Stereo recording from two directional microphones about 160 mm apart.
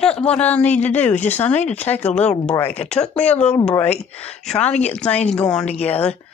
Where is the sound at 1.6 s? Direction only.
45° left (ahead or behind).